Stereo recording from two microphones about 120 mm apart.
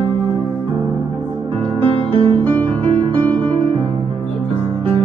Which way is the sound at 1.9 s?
45° right (ahead or behind).